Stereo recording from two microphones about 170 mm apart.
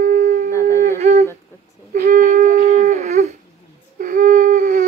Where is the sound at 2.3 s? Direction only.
45° right (ahead or behind).